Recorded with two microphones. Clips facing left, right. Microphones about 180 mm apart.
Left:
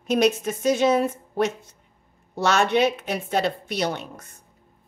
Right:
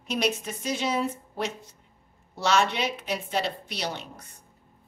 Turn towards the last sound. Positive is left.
turn(degrees=50)  # may be behind; listen again after turning